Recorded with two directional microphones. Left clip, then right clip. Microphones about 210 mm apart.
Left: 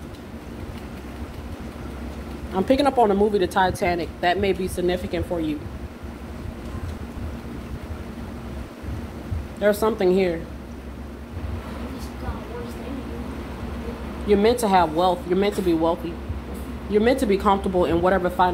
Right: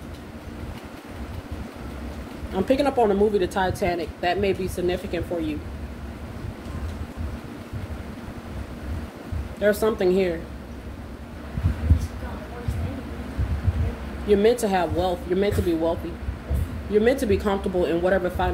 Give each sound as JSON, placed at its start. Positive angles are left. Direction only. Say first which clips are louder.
{"t": 2.7, "sound": "speech", "louder": "left 2 dB", "side_deg": 20}
{"t": 9.6, "sound": "speech", "louder": "left 1 dB", "side_deg": 20}
{"t": 14.2, "sound": "speech", "louder": "even", "side_deg": 20}
{"t": 16.9, "sound": "speech", "louder": "left 1 dB", "side_deg": 20}